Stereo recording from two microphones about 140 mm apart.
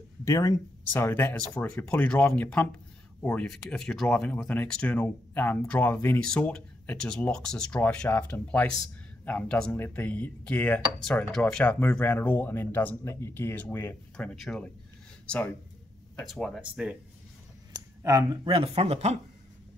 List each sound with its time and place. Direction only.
0.2 s speech: 25° left (ahead or behind)
14.1 s speech: 5° left (ahead or behind)
18.0 s speech: 25° right (ahead or behind)
18.5 s speech: 45° right (ahead or behind)